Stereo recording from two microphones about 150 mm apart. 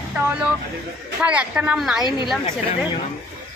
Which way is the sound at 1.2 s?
10° right (ahead or behind).